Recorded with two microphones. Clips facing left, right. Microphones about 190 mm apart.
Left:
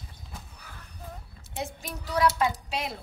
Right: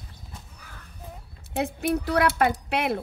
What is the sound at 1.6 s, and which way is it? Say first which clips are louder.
A woman's voice: right 11 dB; 65° right (ahead or behind).